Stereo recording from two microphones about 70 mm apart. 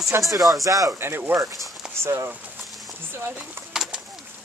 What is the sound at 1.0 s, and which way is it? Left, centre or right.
Speech, right.